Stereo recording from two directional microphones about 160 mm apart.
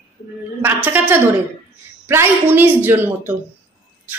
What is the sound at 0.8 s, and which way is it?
A woman's voice, 10° right (ahead or behind).